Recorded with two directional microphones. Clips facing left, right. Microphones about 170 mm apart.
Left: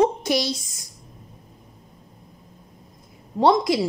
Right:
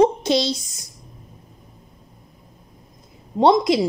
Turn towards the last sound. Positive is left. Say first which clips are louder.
# right 3 dB
turn(degrees=-20)  # may be behind; listen again after turning